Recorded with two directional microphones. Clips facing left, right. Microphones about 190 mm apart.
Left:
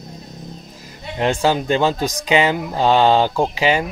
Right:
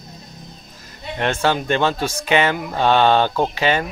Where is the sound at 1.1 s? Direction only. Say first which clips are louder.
Left 2 dB; 15° left (ahead or behind).